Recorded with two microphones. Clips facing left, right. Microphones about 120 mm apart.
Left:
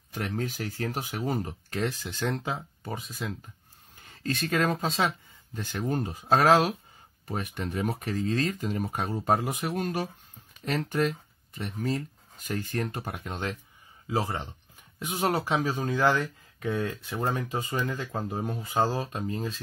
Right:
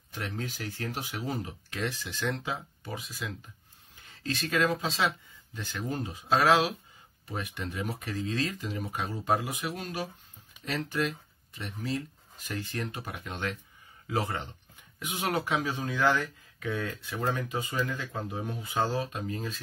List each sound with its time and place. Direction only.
0.1 s speech: 45° left (ahead or behind); by 14.5 s 25° left (ahead or behind)
15.0 s speech: 40° left (ahead or behind)